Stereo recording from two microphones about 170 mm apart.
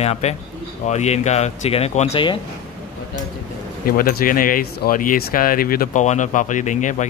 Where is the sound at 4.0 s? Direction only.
55° left (ahead or behind).